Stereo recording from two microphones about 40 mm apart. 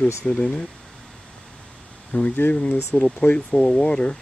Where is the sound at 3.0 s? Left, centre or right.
Centre.